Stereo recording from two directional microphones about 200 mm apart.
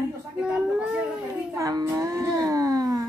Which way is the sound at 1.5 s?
15° right (ahead or behind).